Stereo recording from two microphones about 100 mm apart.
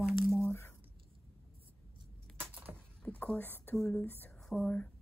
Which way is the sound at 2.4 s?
20° right (ahead or behind).